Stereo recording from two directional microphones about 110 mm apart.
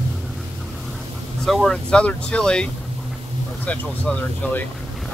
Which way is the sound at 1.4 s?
5° left (ahead or behind).